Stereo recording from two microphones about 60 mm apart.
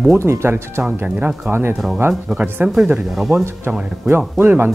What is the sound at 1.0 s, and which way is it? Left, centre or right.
Speech, right.